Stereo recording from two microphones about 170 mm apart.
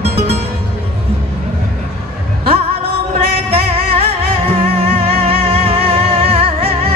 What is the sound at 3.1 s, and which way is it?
Music, 35° right (ahead or behind).